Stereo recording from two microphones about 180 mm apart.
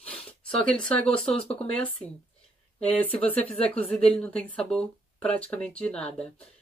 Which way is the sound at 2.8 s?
10° left (ahead or behind).